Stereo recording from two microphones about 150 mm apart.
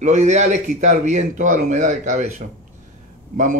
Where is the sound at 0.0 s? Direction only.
50° right (ahead or behind).